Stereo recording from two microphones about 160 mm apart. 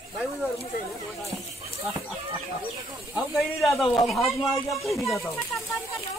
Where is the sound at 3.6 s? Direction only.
20° left (ahead or behind).